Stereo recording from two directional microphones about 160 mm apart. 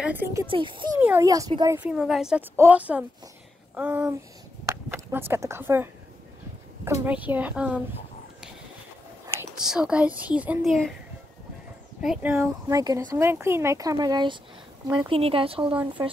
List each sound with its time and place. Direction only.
0.0 s speech: 10° right (ahead or behind)
0.5 s speech: 30° right (ahead or behind)
0.9 s speech: 15° right (ahead or behind)
1.9 s speech: centre (ahead or behind)
9.6 s speech: 5° right (ahead or behind)
12.0 s speech: 5° right (ahead or behind)
12.3 s speech: 20° right (ahead or behind); by 15.8 s 35° right (ahead or behind)